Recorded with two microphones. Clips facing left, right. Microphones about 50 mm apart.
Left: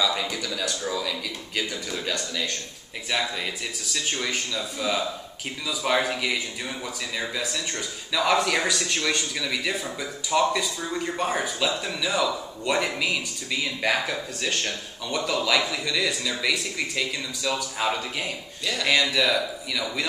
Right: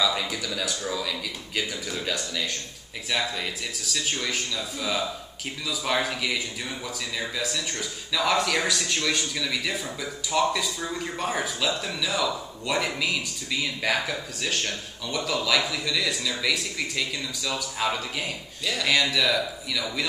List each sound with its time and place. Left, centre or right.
0.0 s a man's voice: centre